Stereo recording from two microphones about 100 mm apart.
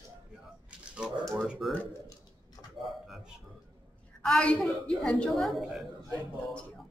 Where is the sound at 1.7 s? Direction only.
15° left (ahead or behind).